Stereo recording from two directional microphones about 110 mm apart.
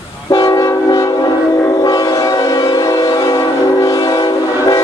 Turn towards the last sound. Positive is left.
turn(degrees=35)  # may be behind; listen again after turning